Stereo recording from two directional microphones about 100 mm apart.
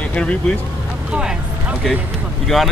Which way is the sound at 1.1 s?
10° right (ahead or behind).